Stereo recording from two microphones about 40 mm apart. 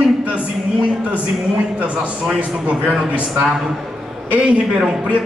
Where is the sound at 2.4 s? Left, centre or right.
Right.